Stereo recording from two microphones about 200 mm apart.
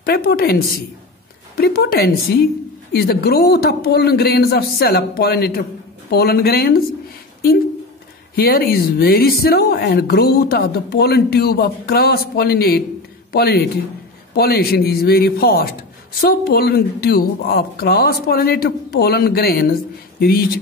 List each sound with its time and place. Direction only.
0.0 s speech: 50° left (ahead or behind)
1.6 s speech: 50° left (ahead or behind)
8.4 s speech: 50° left (ahead or behind)